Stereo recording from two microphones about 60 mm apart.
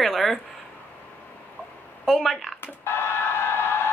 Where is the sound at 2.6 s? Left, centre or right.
Left.